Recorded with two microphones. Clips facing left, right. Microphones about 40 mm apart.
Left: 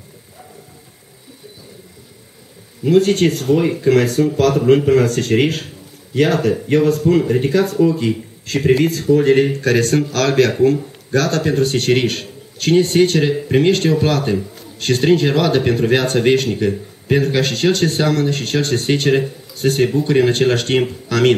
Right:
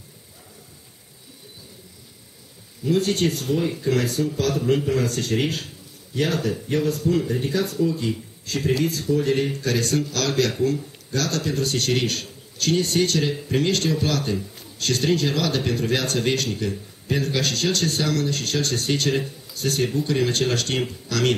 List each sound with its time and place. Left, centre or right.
2.8 s speech: left